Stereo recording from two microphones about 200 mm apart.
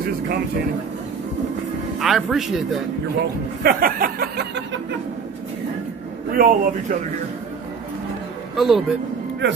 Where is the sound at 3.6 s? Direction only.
45° right (ahead or behind).